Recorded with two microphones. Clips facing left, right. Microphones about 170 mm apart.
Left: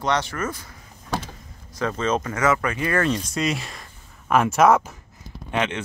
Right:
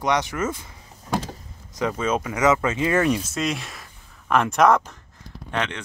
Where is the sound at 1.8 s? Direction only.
10° right (ahead or behind).